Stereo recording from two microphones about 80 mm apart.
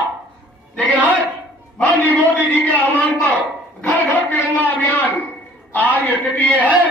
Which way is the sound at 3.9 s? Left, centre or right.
Left.